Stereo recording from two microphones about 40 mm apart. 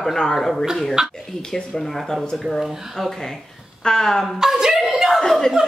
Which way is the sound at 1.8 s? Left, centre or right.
Centre.